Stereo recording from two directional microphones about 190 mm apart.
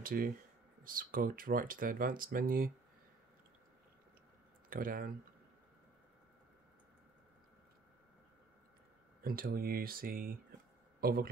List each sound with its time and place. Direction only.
0.0 s speech: 50° right (ahead or behind)
4.6 s speech: 50° right (ahead or behind)
9.2 s speech: 50° right (ahead or behind)